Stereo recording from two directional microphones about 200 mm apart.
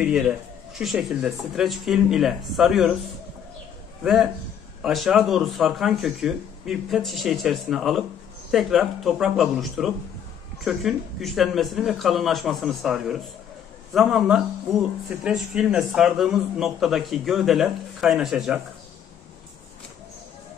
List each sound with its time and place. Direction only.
0.0 s speech: 5° right (ahead or behind)
4.0 s a man's voice: 5° right (ahead or behind)